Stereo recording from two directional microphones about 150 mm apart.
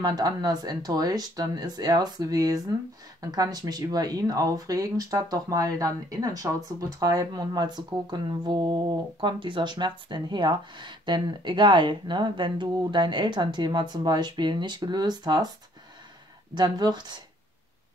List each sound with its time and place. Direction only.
0.0 s speech: 25° right (ahead or behind)
16.5 s speech: 25° right (ahead or behind)